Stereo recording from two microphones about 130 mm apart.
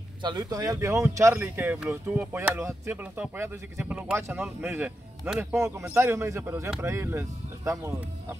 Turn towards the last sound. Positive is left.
turn(degrees=-20)  # may be behind; listen again after turning